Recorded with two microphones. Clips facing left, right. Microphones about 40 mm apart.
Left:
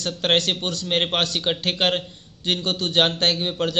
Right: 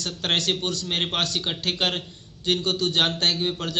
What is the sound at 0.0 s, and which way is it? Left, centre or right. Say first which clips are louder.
A man's voice: left 4 dB; left.